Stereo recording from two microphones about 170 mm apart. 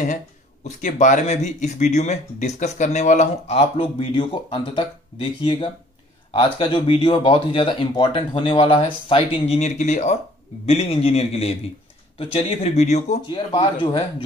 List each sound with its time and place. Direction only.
0.7 s speech: 45° left (ahead or behind)